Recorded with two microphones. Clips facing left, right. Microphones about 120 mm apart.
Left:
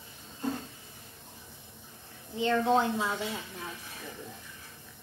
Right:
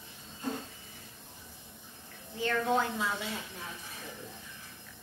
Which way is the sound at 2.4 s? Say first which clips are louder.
Left 4 dB; 20° left (ahead or behind).